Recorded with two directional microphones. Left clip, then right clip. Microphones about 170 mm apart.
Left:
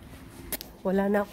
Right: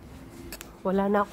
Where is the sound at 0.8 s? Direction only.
5° left (ahead or behind).